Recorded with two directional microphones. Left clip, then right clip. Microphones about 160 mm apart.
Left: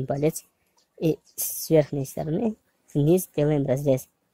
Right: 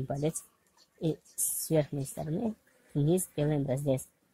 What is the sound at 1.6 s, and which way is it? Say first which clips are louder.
Speech: left 9 dB; 40° left (ahead or behind).